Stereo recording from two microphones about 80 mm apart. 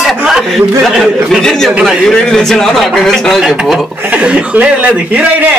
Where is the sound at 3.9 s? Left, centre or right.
Centre.